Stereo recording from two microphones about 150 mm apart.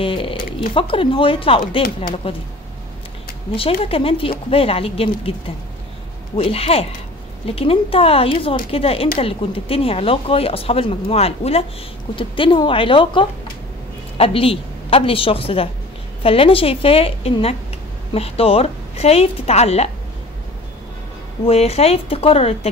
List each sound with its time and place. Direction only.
0.0 s speech: 35° left (ahead or behind)
3.8 s speech: 40° left (ahead or behind)
6.3 s a woman's voice: 40° left (ahead or behind)
21.5 s speech: 40° left (ahead or behind)